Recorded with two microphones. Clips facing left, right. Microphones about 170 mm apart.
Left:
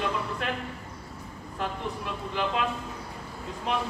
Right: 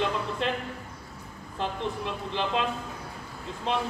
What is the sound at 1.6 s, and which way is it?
Speech, 25° right (ahead or behind).